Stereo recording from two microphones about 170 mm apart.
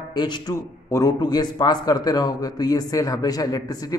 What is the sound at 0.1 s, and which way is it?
A man's voice, 25° left (ahead or behind).